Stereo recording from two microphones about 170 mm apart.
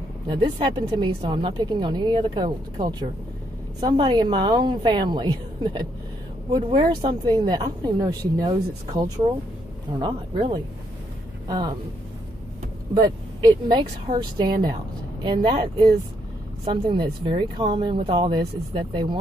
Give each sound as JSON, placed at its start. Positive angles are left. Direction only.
{"t": 0.3, "sound": "a woman's voice", "side_deg": -25}
{"t": 11.4, "sound": "speech", "side_deg": -25}
{"t": 13.5, "sound": "a woman's voice", "side_deg": -25}